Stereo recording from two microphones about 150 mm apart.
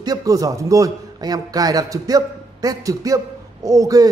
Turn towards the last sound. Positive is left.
turn(degrees=-25)  # may be behind; listen again after turning